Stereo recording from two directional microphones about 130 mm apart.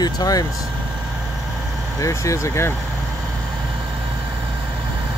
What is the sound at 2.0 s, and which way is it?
Speech, 25° left (ahead or behind).